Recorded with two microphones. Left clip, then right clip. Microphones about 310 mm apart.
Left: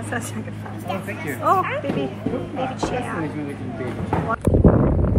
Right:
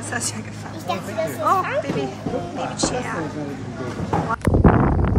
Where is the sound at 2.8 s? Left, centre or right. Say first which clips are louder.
Right 1 dB; centre.